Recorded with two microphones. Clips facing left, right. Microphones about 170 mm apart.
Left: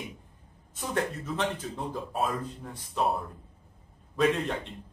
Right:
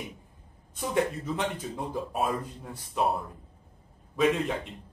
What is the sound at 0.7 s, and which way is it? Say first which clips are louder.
Speech: right 3 dB; 15° right (ahead or behind).